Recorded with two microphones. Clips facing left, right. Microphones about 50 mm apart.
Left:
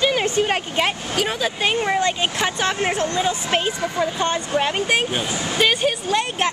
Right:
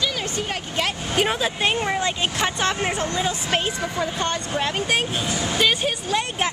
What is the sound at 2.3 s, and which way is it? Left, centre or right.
Speech, centre.